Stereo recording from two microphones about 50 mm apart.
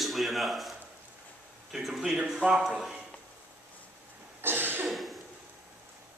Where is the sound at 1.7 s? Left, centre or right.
Centre.